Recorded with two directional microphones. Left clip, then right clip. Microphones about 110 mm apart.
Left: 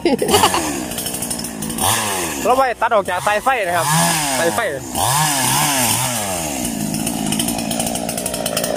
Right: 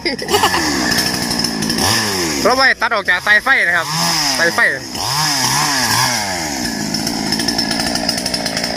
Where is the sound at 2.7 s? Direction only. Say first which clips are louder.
Right 3 dB; 15° left (ahead or behind).